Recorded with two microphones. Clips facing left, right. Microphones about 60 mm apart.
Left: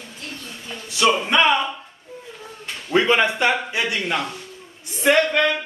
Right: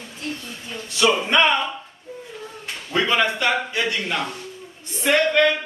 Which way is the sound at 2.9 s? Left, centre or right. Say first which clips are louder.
Left 3 dB; left.